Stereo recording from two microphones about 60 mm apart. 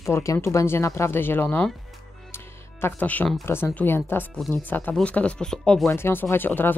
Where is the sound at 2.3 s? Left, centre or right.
Left.